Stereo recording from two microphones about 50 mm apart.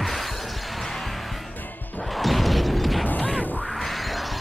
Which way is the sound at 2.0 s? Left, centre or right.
Centre.